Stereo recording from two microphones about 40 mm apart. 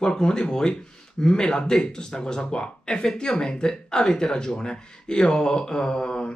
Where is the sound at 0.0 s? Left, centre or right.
Centre.